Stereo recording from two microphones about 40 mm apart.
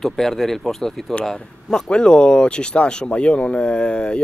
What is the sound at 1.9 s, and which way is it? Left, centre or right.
Speech, left.